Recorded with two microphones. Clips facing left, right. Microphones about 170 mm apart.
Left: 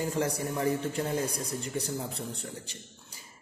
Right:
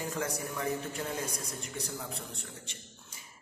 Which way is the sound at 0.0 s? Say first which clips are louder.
Left 5 dB; 30° left (ahead or behind).